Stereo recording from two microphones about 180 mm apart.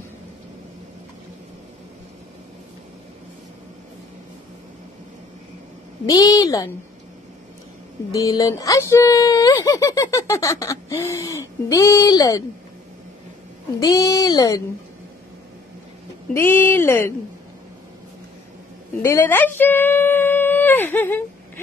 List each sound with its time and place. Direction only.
6.0 s speech: 20° left (ahead or behind)
8.1 s speech: 20° left (ahead or behind)
13.7 s speech: 20° left (ahead or behind)
16.3 s speech: 10° left (ahead or behind)
19.0 s speech: 15° left (ahead or behind)